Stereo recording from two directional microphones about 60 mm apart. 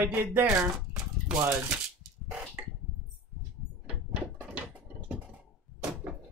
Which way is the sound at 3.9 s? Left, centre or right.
Right.